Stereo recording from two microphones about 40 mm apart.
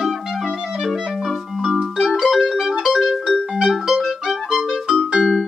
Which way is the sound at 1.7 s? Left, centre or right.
Centre.